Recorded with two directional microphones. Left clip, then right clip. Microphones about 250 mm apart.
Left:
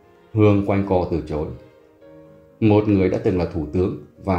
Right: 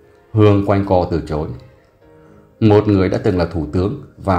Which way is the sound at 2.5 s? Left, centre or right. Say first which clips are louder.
Right 4 dB; centre.